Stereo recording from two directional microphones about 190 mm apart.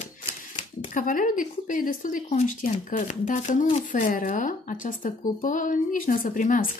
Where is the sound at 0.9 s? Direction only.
45° left (ahead or behind).